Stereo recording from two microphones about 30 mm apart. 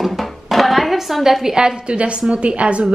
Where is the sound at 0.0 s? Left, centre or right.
Centre; by 1.8 s right.